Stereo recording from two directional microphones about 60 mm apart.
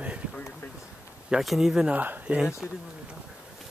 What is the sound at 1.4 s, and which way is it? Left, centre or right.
Speech, centre.